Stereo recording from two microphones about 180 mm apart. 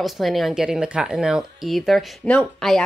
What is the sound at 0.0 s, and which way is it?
Speech, centre (ahead or behind).